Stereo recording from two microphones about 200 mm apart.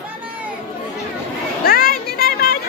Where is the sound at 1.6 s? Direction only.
45° left (ahead or behind).